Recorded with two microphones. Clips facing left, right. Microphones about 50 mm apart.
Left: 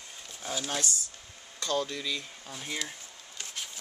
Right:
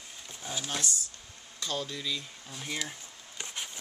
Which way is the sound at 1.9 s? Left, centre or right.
Centre.